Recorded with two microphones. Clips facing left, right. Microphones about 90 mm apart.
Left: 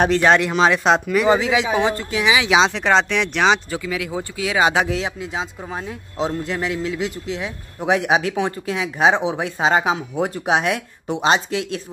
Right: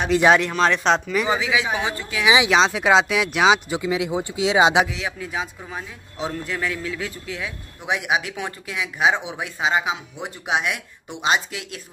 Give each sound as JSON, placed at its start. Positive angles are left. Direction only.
{"t": 0.1, "sound": "speech", "side_deg": -10}
{"t": 0.4, "sound": "speech", "side_deg": 5}
{"t": 1.3, "sound": "a man's voice", "side_deg": 40}
{"t": 2.2, "sound": "speech", "side_deg": -20}
{"t": 2.5, "sound": "speech", "side_deg": -5}
{"t": 3.8, "sound": "speech", "side_deg": -20}
{"t": 5.0, "sound": "a man's voice", "side_deg": 25}